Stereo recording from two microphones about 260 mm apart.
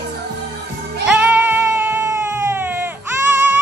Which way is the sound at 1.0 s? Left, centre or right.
Centre.